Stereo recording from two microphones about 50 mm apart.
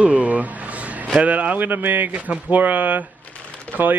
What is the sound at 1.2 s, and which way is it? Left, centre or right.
A man's voice, right.